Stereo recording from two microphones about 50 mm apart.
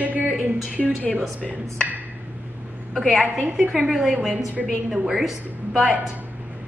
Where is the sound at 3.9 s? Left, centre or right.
Centre.